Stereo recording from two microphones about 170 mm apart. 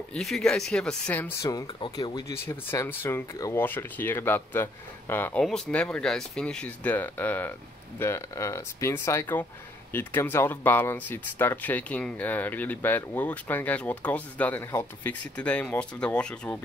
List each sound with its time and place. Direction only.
0.1 s speech: 5° left (ahead or behind)